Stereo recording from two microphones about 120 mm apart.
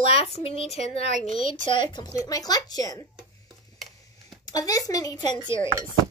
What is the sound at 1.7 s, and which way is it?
Speech, 40° left (ahead or behind).